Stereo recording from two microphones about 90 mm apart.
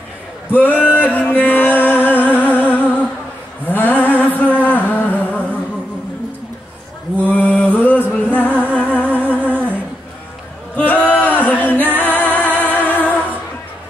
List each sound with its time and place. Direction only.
0.6 s music: 15° left (ahead or behind)
3.6 s a sound: 20° left (ahead or behind)
4.2 s music: 15° left (ahead or behind)
7.2 s music: 15° left (ahead or behind)
9.5 s humming: 20° right (ahead or behind)
10.8 s a sound: 20° left (ahead or behind)
11.8 s music: 20° left (ahead or behind)